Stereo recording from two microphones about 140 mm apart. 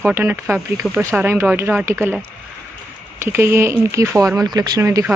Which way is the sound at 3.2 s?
15° right (ahead or behind).